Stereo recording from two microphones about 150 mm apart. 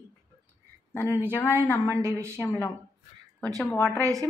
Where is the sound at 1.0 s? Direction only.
15° right (ahead or behind).